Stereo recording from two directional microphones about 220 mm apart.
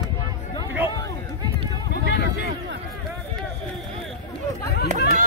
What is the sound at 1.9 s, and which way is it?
Speech, 50° left (ahead or behind).